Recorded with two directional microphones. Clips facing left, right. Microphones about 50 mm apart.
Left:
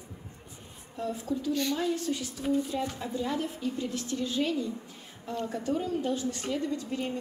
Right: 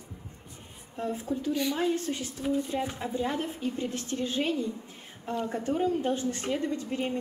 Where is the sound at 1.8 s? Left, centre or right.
Right.